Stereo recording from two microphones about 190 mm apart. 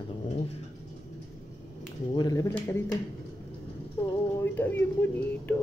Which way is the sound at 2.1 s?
20° left (ahead or behind).